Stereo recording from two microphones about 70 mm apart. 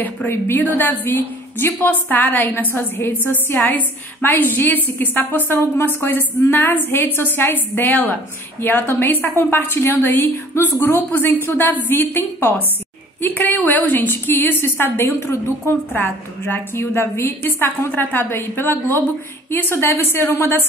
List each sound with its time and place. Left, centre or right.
0.3 s a woman's voice: left